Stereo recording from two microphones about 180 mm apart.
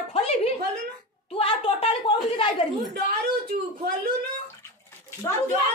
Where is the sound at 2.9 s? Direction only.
60° right (ahead or behind).